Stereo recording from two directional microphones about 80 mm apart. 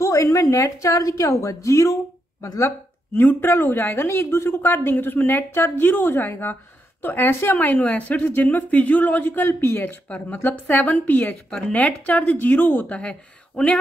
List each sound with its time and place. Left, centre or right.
0.0 s a woman's voice: left
3.2 s a woman's voice: left
10.0 s a woman's voice: centre